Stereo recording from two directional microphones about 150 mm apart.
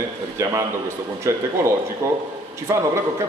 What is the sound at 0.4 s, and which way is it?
A man's voice, 20° right (ahead or behind).